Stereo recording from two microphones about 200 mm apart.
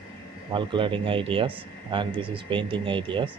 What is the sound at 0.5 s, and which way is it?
Speech, 25° right (ahead or behind).